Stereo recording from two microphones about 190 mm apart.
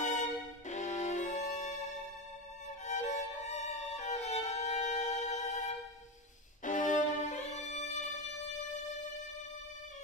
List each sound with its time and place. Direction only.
0.7 s music: 40° left (ahead or behind)
2.8 s violin: 40° left (ahead or behind)
6.6 s music: 40° left (ahead or behind)